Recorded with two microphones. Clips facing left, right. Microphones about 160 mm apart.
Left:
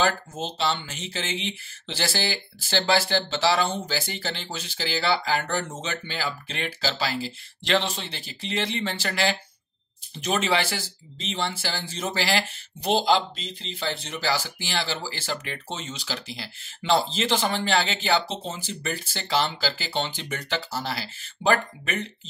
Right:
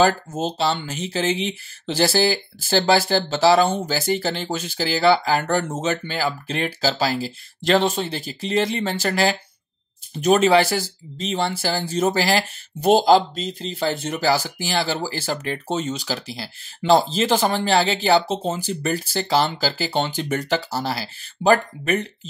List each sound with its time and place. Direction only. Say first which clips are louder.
0.0 s speech: right 7 dB; 40° right (ahead or behind)